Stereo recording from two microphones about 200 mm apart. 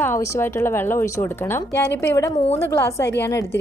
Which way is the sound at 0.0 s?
15° left (ahead or behind).